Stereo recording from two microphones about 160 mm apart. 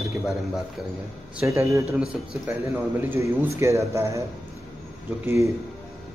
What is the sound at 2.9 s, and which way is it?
A man's voice, 15° right (ahead or behind).